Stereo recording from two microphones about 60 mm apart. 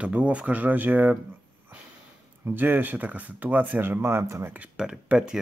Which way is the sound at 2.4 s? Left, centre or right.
Right.